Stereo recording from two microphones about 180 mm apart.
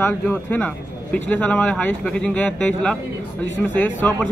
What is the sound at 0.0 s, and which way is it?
A man's voice, 10° left (ahead or behind).